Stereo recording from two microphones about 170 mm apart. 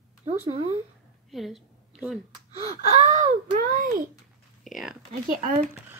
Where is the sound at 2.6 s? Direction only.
40° right (ahead or behind).